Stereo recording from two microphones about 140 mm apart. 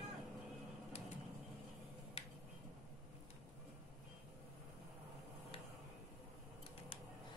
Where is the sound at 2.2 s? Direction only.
50° left (ahead or behind).